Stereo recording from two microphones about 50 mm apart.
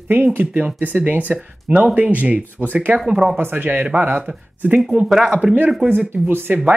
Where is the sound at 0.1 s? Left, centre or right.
Right.